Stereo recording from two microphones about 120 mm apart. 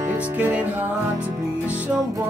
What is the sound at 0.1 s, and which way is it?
Music, 15° right (ahead or behind).